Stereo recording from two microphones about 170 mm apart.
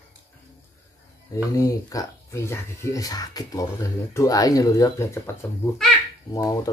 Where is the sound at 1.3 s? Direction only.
20° left (ahead or behind).